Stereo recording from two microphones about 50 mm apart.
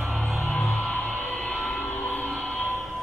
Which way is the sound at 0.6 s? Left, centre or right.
Centre.